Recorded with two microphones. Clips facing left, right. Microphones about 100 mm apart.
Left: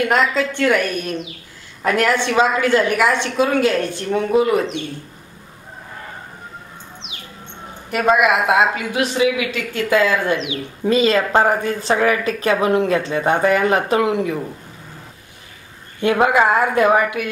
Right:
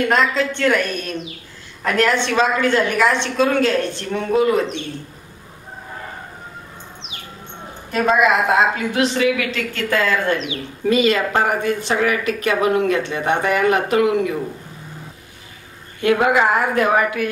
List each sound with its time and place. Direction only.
0.1 s a woman's voice: 15° left (ahead or behind)
7.9 s a woman's voice: 10° left (ahead or behind)
10.5 s a woman's voice: 30° left (ahead or behind)
16.0 s a woman's voice: 25° left (ahead or behind)